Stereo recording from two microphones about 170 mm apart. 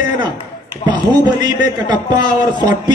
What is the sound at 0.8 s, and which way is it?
A man's voice, 25° right (ahead or behind).